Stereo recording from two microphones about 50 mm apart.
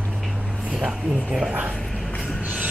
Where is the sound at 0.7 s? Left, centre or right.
Centre.